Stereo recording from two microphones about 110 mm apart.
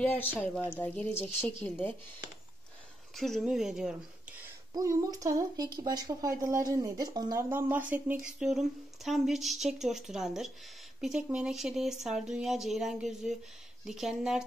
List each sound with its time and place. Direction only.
0.0 s speech: 15° left (ahead or behind)
3.2 s speech: centre (ahead or behind)
4.7 s speech: 30° right (ahead or behind)
7.4 s speech: 20° right (ahead or behind)